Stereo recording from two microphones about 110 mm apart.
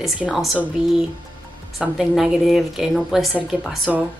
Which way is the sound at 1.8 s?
5° right (ahead or behind).